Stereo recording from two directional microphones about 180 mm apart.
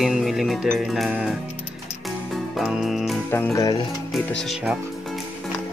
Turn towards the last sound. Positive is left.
turn(degrees=-5)  # may be behind; listen again after turning